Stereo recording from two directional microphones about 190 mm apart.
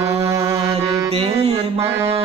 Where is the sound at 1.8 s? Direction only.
15° right (ahead or behind).